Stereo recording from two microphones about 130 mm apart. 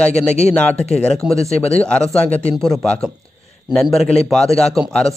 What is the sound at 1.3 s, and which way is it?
Speech, 55° left (ahead or behind).